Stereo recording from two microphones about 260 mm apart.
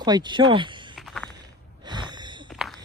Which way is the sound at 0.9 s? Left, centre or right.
Centre.